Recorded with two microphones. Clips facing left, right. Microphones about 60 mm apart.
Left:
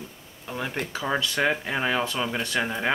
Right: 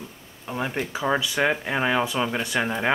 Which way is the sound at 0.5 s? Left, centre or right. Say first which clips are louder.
Right 3 dB; centre.